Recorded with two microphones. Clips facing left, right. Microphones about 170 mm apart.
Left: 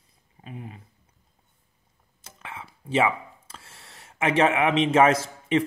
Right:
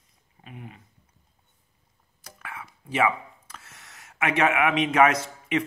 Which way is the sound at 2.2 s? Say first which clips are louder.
Even; 25° left (ahead or behind).